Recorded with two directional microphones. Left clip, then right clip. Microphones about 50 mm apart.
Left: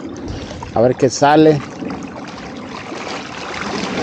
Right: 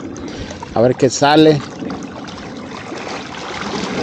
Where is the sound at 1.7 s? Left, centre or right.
Centre.